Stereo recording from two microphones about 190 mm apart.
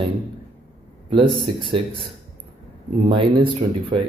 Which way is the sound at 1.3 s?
25° right (ahead or behind).